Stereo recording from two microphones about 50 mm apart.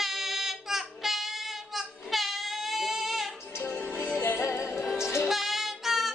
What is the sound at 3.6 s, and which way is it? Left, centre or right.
Music, left.